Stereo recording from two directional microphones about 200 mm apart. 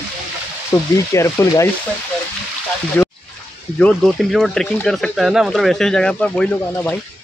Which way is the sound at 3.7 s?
5° left (ahead or behind).